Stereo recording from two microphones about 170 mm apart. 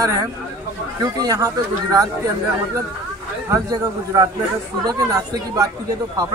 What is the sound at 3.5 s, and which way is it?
A man's voice, 20° right (ahead or behind).